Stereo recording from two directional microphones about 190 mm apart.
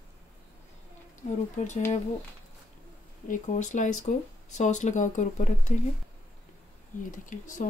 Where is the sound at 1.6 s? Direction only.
40° left (ahead or behind).